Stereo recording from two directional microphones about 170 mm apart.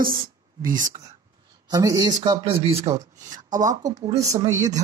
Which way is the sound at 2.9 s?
20° right (ahead or behind).